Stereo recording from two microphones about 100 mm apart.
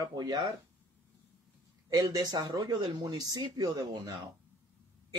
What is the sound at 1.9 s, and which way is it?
Speech, 40° right (ahead or behind).